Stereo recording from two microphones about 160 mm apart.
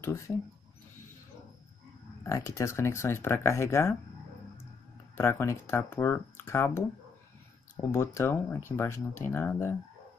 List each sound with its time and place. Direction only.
2.2 s speech: 20° left (ahead or behind)
5.1 s speech: 15° left (ahead or behind)
7.9 s speech: 15° left (ahead or behind)